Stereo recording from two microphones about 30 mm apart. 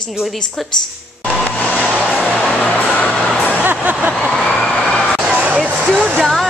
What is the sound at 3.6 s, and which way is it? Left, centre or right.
Vehicle, right.